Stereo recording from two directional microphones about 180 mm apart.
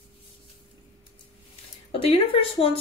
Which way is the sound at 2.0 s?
30° left (ahead or behind).